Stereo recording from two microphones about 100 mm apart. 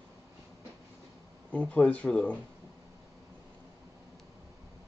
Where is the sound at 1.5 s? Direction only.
15° left (ahead or behind).